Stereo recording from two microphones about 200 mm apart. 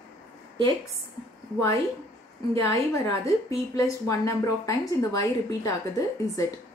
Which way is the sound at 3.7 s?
15° left (ahead or behind).